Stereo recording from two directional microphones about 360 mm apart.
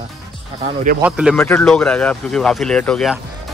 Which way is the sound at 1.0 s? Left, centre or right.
Centre.